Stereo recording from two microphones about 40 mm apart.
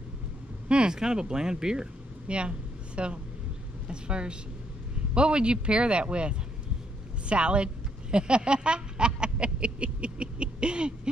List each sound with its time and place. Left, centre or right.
0.7 s vehicle: right
0.9 s speech: centre